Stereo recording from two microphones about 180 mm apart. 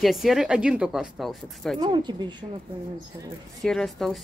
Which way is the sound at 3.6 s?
Centre (ahead or behind).